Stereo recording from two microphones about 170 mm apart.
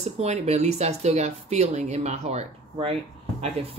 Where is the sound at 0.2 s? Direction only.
40° right (ahead or behind).